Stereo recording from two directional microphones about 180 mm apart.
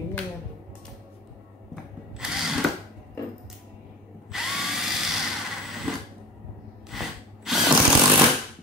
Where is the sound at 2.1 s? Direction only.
5° right (ahead or behind).